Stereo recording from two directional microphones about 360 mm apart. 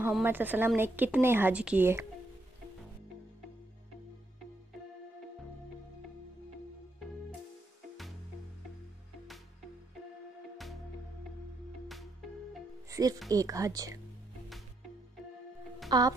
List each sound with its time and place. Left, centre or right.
0.0 s speech: centre
12.9 s speech: centre
15.9 s speech: centre